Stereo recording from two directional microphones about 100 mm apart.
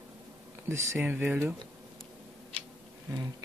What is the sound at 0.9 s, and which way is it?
Speech, 15° right (ahead or behind).